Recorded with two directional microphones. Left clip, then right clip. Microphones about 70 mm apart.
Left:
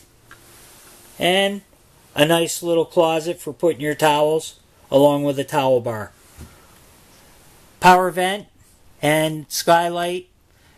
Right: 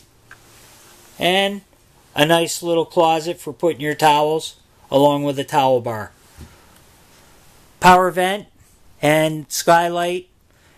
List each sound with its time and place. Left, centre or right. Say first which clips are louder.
1.1 s speech: right 1 dB; centre
7.8 s speech: right 1 dB; right